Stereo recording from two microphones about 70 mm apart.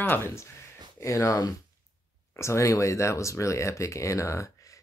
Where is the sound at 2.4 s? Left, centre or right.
Left.